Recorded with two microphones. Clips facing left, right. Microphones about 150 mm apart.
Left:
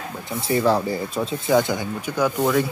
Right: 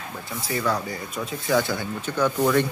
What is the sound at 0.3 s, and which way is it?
Speech, 25° left (ahead or behind).